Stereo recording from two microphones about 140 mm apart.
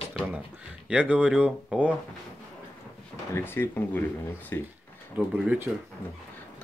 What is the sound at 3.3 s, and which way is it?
Speech, 15° left (ahead or behind).